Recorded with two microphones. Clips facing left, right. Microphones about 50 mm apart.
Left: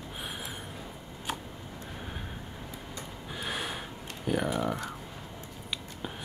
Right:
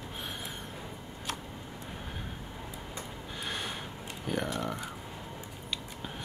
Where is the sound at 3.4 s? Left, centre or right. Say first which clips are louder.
Left 2 dB; centre.